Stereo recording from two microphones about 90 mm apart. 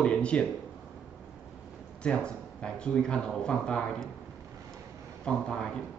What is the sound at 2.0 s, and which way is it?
Speech, 10° left (ahead or behind).